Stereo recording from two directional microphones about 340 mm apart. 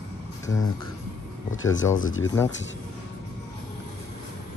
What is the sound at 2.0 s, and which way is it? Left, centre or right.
Speech, left.